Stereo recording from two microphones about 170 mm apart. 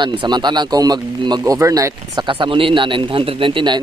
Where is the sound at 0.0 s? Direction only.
30° right (ahead or behind).